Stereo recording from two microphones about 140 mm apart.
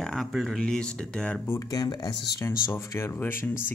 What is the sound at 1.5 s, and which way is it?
Speech, 25° left (ahead or behind).